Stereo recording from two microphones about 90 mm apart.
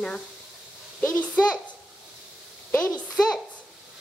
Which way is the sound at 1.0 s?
15° left (ahead or behind).